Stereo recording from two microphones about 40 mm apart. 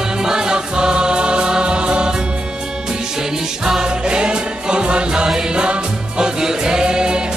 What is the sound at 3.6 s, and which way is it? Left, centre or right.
Music, centre.